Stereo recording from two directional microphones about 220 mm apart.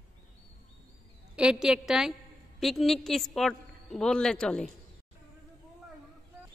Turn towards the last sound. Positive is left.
turn(degrees=5)  # may be behind; listen again after turning